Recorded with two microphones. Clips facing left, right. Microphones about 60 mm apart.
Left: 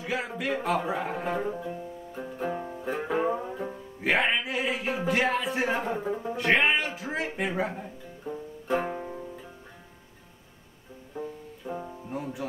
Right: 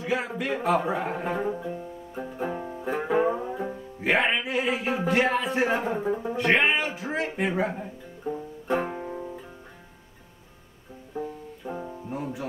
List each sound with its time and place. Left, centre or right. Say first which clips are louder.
0.0 s speech: right 3 dB; centre
11.1 s music: right 3 dB; centre